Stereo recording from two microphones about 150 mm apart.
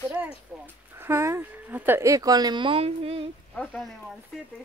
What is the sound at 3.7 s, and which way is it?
Speech, centre (ahead or behind).